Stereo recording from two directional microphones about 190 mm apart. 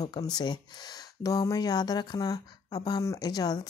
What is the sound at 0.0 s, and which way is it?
Speech, 20° left (ahead or behind).